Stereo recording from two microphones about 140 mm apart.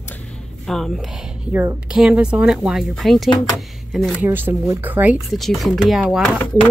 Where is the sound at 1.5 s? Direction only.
20° right (ahead or behind).